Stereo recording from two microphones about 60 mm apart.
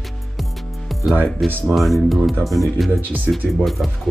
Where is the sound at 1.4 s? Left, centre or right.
Centre.